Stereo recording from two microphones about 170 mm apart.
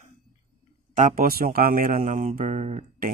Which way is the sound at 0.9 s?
55° right (ahead or behind).